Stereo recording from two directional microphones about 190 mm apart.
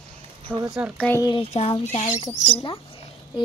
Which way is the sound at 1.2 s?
25° left (ahead or behind).